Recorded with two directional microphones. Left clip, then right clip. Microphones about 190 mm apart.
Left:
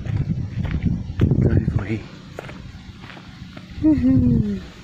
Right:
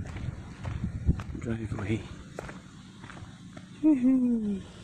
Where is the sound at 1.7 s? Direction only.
15° right (ahead or behind).